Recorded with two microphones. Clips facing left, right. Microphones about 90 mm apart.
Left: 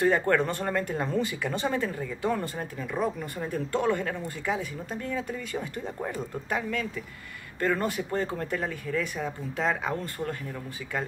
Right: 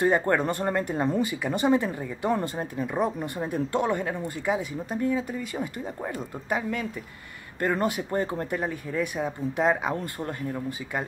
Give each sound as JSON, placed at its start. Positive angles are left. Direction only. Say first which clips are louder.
{"t": 0.0, "sound": "speech", "louder": "right 1 dB", "side_deg": -15}